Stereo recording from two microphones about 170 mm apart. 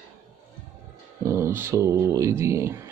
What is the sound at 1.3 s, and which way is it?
Speech, 15° right (ahead or behind).